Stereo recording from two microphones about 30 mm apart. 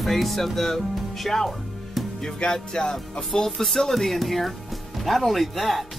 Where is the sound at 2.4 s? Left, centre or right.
Left.